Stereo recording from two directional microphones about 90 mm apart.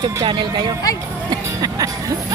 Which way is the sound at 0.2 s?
55° right (ahead or behind).